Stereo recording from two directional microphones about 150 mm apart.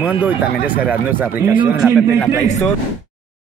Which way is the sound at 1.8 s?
Centre (ahead or behind).